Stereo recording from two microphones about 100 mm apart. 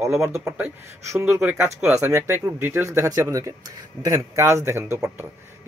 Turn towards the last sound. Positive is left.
turn(degrees=-25)  # may be behind; listen again after turning